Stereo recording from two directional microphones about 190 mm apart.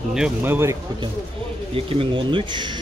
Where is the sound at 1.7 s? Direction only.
30° right (ahead or behind).